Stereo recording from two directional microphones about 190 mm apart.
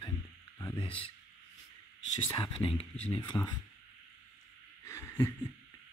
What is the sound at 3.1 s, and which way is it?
Speech, 25° left (ahead or behind).